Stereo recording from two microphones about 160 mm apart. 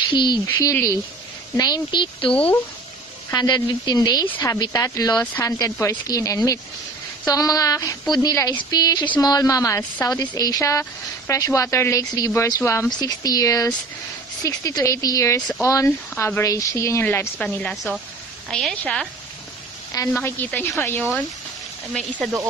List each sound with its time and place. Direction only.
0.1 s speech: 30° left (ahead or behind)
0.5 s speech: 15° left (ahead or behind)
2.3 s speech: 10° left (ahead or behind)
3.3 s a woman's voice: 25° left (ahead or behind); by 19.0 s 5° left (ahead or behind)
20.1 s speech: 15° left (ahead or behind)
21.9 s a woman's voice: centre (ahead or behind)